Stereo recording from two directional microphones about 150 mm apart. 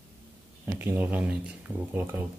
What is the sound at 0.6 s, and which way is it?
Speech, 15° right (ahead or behind).